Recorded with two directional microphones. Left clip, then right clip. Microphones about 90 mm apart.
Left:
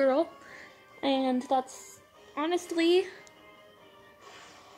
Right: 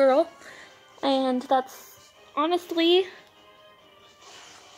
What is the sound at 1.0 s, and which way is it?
Speech, 10° right (ahead or behind).